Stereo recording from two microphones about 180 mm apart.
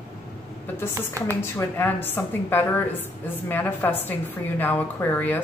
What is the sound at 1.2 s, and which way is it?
Speech, 15° right (ahead or behind).